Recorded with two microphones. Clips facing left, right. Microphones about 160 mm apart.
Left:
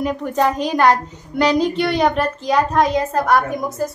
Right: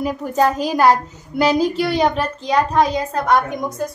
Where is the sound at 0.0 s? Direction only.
5° right (ahead or behind).